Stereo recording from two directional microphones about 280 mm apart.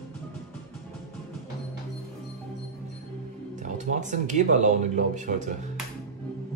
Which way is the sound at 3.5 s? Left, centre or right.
Right.